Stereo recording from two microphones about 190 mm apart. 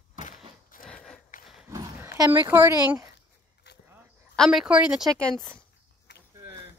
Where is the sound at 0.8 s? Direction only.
5° left (ahead or behind).